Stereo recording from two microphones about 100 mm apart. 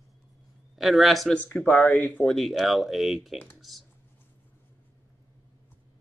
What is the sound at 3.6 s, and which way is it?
Computer keyboard, centre (ahead or behind).